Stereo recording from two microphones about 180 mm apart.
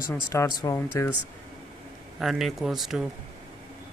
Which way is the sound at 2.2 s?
Centre (ahead or behind).